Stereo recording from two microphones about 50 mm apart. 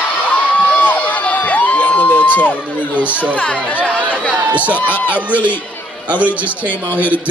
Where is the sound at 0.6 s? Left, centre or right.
Left.